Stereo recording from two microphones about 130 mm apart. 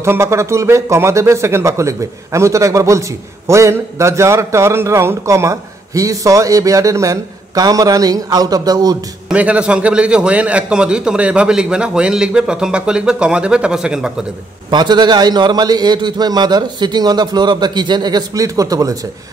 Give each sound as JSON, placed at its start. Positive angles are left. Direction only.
{"t": 0.0, "sound": "speech", "side_deg": -20}
{"t": 9.3, "sound": "a man's voice", "side_deg": -10}
{"t": 14.7, "sound": "a man's voice", "side_deg": -35}